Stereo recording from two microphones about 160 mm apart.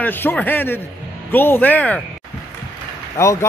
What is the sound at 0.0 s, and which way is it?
A man's voice, 10° left (ahead or behind).